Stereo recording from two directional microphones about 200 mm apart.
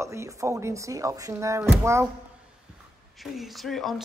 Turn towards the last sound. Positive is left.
turn(degrees=0)  # may be behind; listen again after turning